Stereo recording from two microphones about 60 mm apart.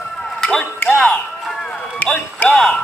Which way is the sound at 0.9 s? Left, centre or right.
Centre.